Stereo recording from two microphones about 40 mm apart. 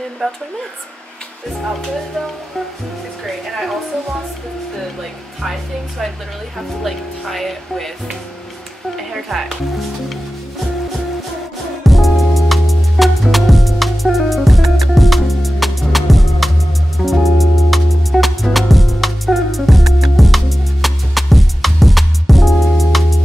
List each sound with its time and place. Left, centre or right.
0.2 s speech: left
3.3 s speech: centre
6.8 s speech: centre
8.9 s music: centre
11.8 s music: centre